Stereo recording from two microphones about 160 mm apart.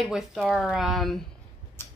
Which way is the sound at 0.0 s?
Centre (ahead or behind).